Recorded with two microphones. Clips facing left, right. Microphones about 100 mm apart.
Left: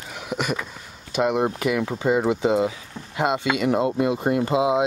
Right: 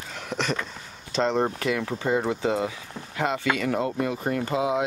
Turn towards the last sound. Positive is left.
turn(degrees=20)  # may be behind; listen again after turning